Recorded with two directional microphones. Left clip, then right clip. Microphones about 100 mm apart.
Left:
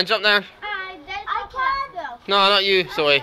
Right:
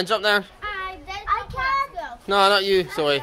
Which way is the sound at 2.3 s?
50° right (ahead or behind).